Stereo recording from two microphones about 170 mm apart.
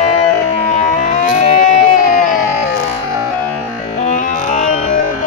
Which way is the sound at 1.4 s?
50° left (ahead or behind).